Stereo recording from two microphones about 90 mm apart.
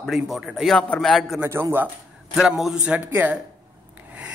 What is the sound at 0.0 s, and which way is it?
Speech, centre (ahead or behind).